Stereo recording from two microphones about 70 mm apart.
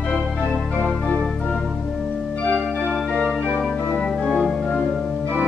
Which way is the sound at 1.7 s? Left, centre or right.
Centre.